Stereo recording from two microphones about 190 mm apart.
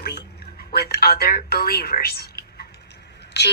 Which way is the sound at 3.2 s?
60° left (ahead or behind).